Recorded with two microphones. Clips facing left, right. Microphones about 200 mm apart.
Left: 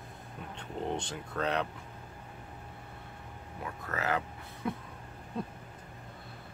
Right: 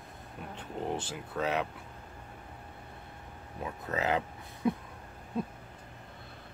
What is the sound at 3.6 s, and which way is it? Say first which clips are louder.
Speech: right 3 dB; 20° right (ahead or behind).